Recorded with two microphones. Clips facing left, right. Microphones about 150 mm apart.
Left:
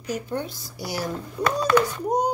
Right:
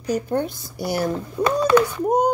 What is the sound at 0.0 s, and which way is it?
Speech, 45° right (ahead or behind).